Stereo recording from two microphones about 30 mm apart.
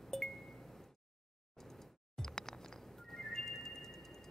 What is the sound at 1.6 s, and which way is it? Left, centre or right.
Music, centre.